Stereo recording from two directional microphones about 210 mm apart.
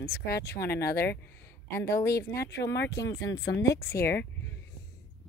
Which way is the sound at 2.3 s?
50° left (ahead or behind).